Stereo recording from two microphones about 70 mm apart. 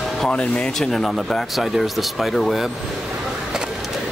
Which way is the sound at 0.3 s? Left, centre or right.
Centre.